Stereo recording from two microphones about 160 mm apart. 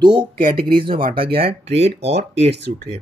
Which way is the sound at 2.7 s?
60° right (ahead or behind).